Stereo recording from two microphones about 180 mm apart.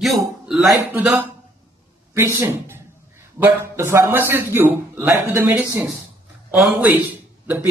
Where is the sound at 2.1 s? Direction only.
15° right (ahead or behind).